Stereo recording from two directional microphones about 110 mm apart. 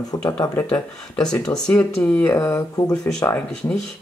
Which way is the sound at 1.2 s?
5° left (ahead or behind).